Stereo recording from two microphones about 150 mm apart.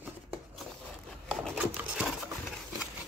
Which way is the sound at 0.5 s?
Centre (ahead or behind).